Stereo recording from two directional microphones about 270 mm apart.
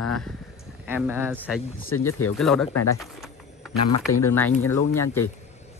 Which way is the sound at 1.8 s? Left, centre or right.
Left.